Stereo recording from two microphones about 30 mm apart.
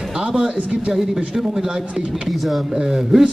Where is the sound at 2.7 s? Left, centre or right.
Centre.